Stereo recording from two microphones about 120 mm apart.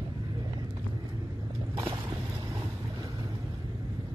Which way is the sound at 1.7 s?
30° right (ahead or behind).